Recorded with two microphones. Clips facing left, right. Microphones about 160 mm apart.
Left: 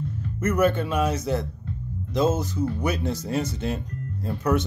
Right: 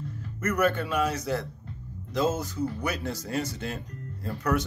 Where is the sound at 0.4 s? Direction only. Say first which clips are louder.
Left 4 dB; 20° left (ahead or behind).